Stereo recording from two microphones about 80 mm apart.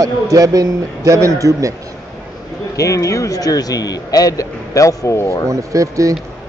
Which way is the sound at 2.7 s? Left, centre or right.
Left.